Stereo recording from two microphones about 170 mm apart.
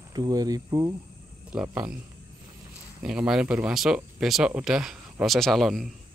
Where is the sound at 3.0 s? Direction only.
5° right (ahead or behind).